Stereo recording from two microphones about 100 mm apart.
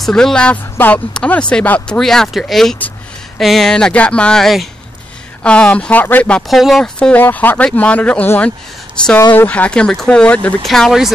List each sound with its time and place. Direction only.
0.0 s speech: 5° left (ahead or behind)
0.7 s speech: 20° left (ahead or behind)
6.4 s speech: centre (ahead or behind)
7.0 s speech: 15° left (ahead or behind); by 11.1 s centre (ahead or behind)